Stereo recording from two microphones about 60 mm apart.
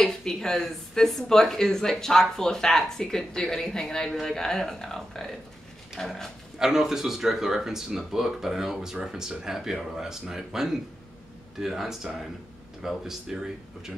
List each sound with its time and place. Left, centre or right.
0.0 s speech: centre
6.6 s speech: centre